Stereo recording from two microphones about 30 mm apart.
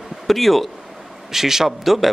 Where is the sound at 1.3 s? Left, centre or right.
Centre.